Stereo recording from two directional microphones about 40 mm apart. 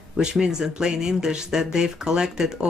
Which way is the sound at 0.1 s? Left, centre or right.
Centre.